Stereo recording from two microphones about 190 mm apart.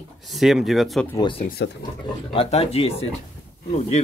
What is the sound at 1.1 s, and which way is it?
Speech, 25° left (ahead or behind).